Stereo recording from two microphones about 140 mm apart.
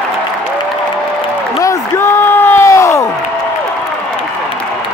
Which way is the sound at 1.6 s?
20° left (ahead or behind).